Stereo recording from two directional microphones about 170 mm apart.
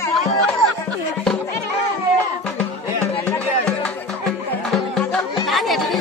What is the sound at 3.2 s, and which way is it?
Music, 10° left (ahead or behind).